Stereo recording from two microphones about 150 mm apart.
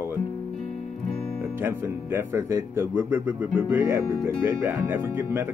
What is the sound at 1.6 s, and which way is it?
Speech, 15° right (ahead or behind).